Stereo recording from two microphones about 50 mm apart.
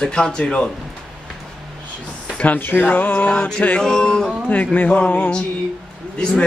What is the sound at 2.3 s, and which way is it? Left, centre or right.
Speech, left.